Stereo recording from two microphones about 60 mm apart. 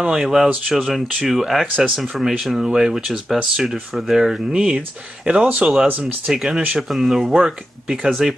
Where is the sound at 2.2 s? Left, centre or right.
Centre.